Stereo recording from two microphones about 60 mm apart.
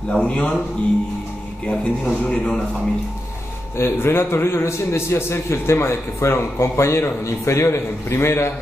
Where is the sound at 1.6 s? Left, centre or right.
Centre.